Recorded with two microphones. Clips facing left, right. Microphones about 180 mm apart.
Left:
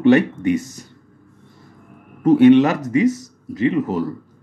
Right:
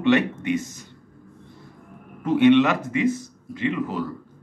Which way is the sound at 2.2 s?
35° left (ahead or behind).